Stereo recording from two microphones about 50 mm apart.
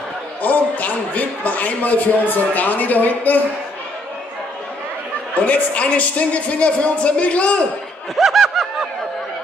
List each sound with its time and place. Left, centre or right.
0.4 s a man's voice: left
5.3 s a woman's voice: left
8.2 s snicker: centre